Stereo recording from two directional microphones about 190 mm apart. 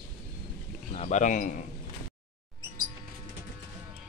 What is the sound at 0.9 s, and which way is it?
Speech, 40° left (ahead or behind).